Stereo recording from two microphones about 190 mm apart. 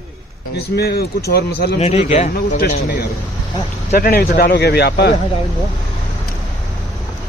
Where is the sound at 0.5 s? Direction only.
55° left (ahead or behind).